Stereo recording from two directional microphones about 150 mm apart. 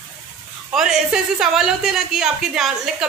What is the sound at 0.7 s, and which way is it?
A woman's voice, 5° right (ahead or behind).